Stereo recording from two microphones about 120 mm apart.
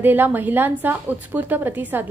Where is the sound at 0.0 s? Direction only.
15° right (ahead or behind).